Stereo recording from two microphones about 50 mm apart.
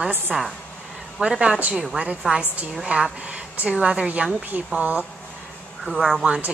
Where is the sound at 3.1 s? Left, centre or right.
Right.